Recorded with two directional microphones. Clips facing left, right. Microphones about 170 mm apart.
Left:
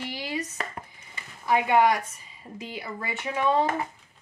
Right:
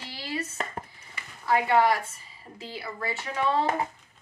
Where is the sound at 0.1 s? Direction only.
15° left (ahead or behind).